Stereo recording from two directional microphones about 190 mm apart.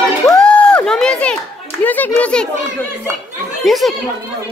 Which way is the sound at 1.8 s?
10° left (ahead or behind).